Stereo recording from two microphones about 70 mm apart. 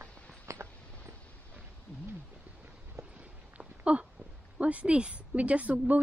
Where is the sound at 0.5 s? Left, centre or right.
Right.